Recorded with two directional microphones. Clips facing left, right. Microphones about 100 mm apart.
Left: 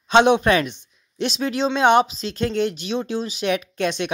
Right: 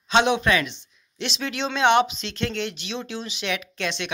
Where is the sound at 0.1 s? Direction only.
45° left (ahead or behind).